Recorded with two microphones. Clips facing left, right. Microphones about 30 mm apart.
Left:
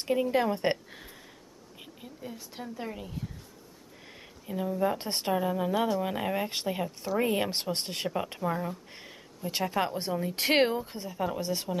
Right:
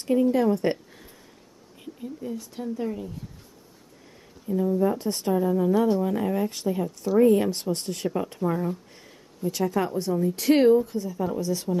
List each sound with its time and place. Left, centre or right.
0.0 s a woman's voice: left
4.5 s a woman's voice: left
8.4 s speech: centre
8.9 s a sound: left
9.5 s a woman's voice: left